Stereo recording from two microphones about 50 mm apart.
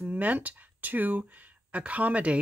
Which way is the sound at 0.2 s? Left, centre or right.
Right.